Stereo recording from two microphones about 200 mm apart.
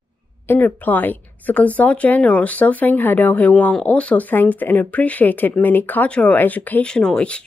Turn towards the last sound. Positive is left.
turn(degrees=5)  # may be behind; listen again after turning